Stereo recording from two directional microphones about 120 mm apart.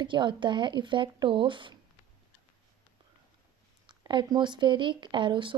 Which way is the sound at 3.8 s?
40° right (ahead or behind).